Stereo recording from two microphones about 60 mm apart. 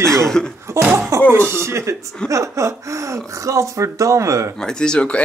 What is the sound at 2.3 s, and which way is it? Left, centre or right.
Speech, right.